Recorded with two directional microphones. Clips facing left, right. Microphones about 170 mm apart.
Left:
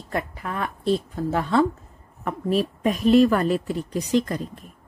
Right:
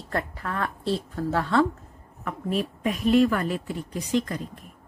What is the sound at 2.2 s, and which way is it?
Speech, 35° left (ahead or behind).